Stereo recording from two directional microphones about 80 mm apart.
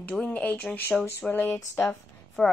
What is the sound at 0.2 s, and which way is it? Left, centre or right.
Speech, centre.